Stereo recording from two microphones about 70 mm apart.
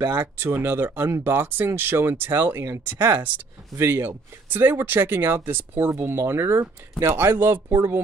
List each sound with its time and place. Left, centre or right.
0.0 s speech: right